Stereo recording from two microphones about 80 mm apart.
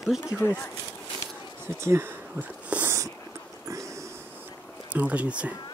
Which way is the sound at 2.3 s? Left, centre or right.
Right.